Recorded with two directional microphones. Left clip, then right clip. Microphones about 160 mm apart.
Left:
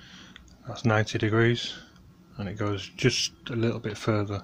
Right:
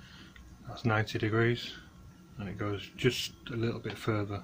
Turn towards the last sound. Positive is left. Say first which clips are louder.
# left 6 dB
turn(degrees=45)  # may be behind; listen again after turning